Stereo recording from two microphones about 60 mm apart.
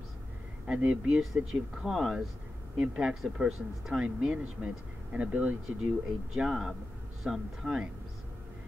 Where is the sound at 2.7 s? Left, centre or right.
Centre.